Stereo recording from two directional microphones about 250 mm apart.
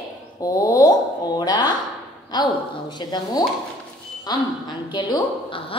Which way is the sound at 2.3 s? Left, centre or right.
Centre.